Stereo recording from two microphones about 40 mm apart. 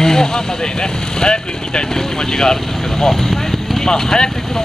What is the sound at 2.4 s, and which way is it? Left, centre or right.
Speech, centre.